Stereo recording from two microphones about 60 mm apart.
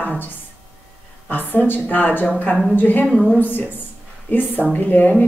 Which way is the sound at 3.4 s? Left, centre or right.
Left.